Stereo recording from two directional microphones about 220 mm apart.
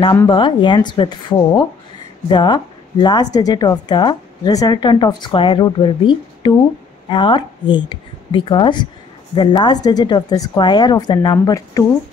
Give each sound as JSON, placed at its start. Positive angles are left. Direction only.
{"t": 0.0, "sound": "a woman's voice", "side_deg": 20}